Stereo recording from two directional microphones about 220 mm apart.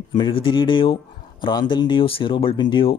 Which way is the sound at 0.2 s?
20° left (ahead or behind).